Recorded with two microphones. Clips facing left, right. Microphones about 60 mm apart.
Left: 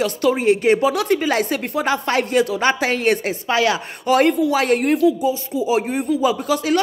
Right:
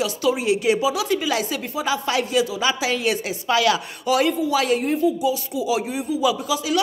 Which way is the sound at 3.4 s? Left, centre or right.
Left.